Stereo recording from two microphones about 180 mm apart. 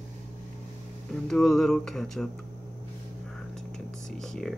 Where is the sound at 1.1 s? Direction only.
Centre (ahead or behind).